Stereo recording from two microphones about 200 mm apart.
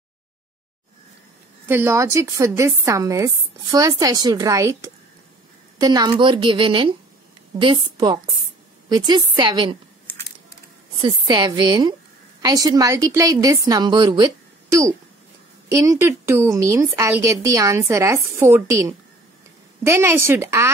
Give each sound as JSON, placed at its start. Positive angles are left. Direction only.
{"t": 1.7, "sound": "a woman's voice", "side_deg": -10}
{"t": 11.0, "sound": "a woman's voice", "side_deg": -25}